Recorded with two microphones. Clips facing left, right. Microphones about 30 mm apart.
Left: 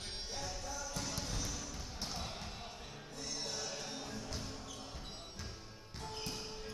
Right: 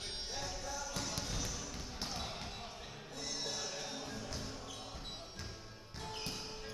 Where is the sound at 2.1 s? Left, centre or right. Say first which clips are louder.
Right 1 dB; centre.